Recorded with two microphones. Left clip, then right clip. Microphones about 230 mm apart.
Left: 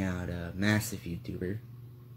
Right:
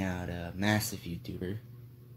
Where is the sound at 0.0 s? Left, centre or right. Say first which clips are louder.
Even; centre.